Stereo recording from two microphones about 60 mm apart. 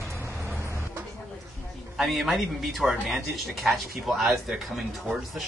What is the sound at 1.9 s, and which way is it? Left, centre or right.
Speech, centre.